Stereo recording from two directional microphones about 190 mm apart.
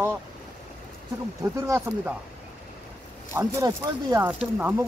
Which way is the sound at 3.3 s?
15° right (ahead or behind).